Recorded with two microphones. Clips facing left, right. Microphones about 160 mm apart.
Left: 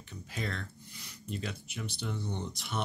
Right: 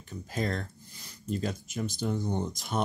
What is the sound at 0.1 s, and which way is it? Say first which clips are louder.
Speech: right 7 dB; 40° right (ahead or behind).